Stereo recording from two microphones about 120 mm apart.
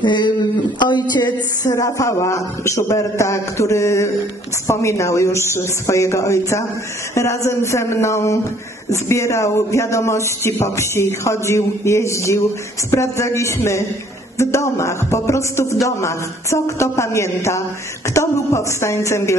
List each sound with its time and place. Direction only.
0.0 s speech: 40° left (ahead or behind); by 19.3 s 25° left (ahead or behind)